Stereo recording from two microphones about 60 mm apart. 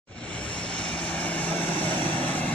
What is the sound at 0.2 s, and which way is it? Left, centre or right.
Vehicle, centre.